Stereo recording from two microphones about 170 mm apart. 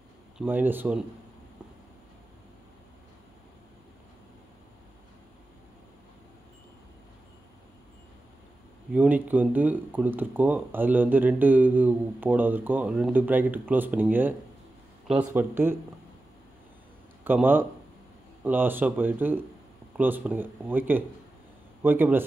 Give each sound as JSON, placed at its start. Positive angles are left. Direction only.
{"t": 0.4, "sound": "speech", "side_deg": -10}
{"t": 8.9, "sound": "speech", "side_deg": -10}
{"t": 17.2, "sound": "a man's voice", "side_deg": -10}